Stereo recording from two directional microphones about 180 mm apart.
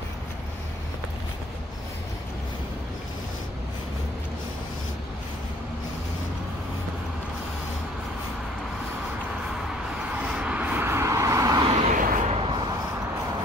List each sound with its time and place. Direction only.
10.1 s vehicle: 5° right (ahead or behind)
11.9 s vehicle: 50° right (ahead or behind)
12.3 s vehicle: 30° right (ahead or behind)